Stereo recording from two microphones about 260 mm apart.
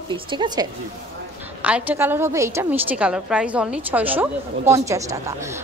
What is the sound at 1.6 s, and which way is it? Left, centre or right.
A woman's voice, centre.